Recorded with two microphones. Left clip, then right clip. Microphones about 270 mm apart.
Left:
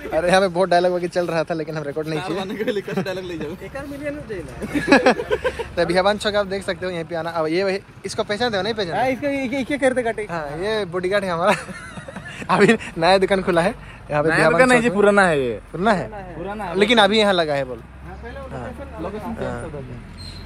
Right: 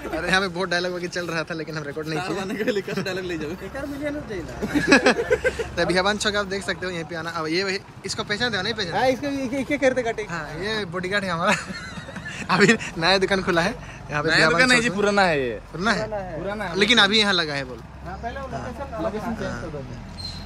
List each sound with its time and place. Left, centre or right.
0.1 s a man's voice: centre
4.8 s a man's voice: centre
9.0 s speech: left
10.3 s a man's voice: centre
14.2 s speech: centre
15.8 s a man's voice: centre